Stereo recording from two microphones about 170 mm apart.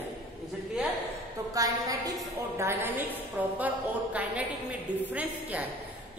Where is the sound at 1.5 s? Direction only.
20° right (ahead or behind).